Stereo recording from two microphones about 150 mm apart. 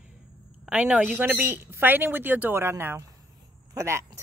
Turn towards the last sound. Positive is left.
turn(degrees=-20)  # may be behind; listen again after turning